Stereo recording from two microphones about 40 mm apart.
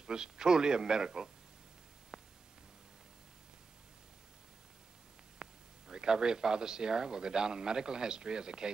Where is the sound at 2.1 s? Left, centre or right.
Centre.